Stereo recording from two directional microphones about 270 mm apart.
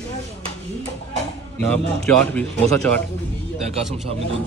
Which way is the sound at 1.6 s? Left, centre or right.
Centre.